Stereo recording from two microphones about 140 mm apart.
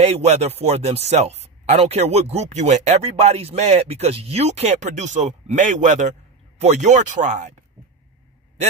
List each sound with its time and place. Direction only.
0.0 s speech: 50° right (ahead or behind)